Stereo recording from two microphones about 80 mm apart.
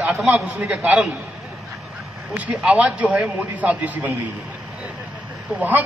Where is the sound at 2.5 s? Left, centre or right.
Centre.